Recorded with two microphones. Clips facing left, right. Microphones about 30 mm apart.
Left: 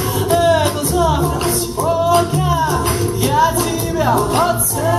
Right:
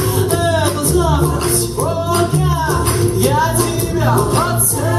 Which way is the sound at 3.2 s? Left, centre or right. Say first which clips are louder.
Left 2 dB; centre.